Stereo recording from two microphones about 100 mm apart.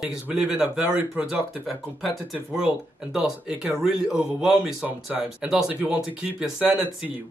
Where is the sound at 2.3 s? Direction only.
10° right (ahead or behind).